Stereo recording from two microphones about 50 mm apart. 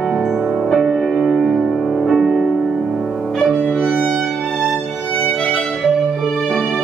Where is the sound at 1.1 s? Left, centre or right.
Centre.